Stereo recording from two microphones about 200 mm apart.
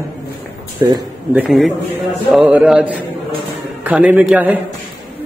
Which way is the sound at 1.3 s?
5° right (ahead or behind).